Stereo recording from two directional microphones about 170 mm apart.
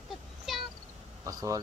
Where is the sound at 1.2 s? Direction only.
20° right (ahead or behind).